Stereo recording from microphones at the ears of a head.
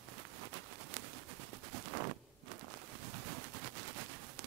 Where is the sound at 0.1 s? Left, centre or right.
Right.